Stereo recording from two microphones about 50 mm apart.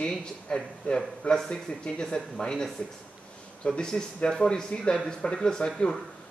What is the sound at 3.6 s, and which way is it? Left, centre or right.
Speech, centre.